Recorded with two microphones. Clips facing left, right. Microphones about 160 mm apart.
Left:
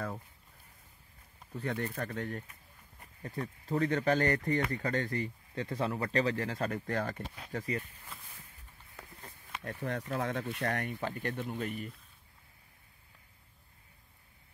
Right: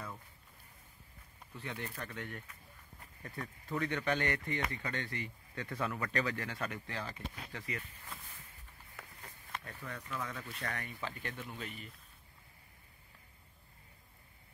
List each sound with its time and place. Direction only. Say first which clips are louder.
1.5 s speech: left 8 dB; 45° left (ahead or behind)
6.9 s speech: left 8 dB; 50° left (ahead or behind)
9.8 s speech: left 9 dB; 70° left (ahead or behind); by 11.9 s 45° left (ahead or behind)